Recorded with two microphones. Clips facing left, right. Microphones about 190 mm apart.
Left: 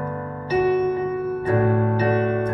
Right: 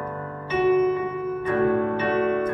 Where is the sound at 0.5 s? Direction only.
35° left (ahead or behind).